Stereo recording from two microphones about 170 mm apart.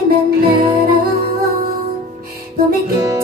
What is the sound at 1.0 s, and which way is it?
Music, 60° right (ahead or behind).